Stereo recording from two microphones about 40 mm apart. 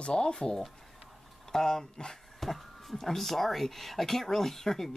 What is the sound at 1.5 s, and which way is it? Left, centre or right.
Speech, centre.